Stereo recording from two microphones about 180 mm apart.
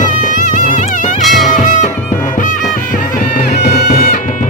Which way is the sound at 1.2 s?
Centre (ahead or behind).